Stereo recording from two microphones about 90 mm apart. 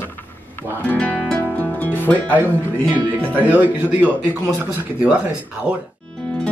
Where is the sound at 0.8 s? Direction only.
15° left (ahead or behind).